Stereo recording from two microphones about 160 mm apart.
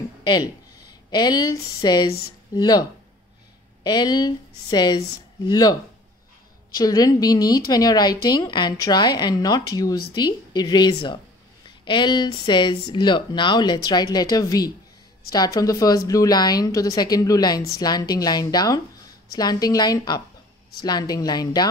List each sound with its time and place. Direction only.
0.2 s a woman's voice: 25° left (ahead or behind)
6.8 s a woman's voice: 20° left (ahead or behind)